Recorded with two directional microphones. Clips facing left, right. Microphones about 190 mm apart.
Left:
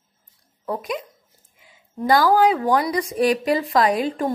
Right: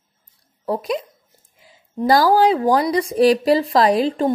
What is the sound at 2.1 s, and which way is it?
A woman's voice, 35° right (ahead or behind).